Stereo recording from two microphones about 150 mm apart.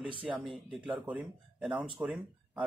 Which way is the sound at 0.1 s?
35° right (ahead or behind).